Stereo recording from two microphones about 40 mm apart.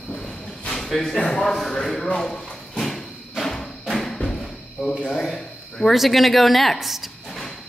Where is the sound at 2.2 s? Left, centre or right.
Centre.